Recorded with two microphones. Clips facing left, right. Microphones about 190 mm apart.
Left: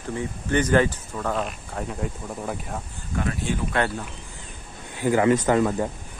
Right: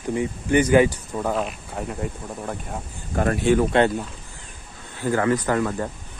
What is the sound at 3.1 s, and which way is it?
Speech, 55° right (ahead or behind).